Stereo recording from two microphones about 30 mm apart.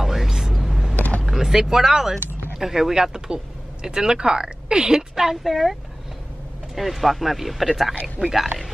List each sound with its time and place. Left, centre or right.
0.0 s music: centre
0.9 s vehicle: left
1.2 s a woman's voice: centre
5.4 s speech: centre